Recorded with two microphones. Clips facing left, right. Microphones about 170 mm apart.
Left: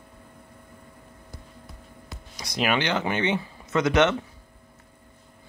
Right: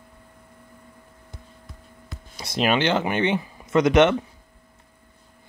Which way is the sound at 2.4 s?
25° right (ahead or behind).